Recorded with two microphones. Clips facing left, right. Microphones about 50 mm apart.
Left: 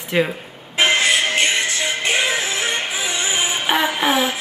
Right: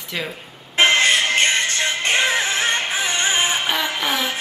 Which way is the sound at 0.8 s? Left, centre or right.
Right.